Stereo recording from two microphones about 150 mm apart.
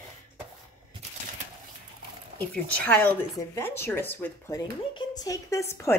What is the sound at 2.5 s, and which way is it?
Speech, 10° left (ahead or behind).